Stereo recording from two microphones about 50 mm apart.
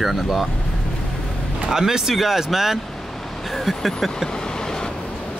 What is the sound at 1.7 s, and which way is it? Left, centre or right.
Speech, centre.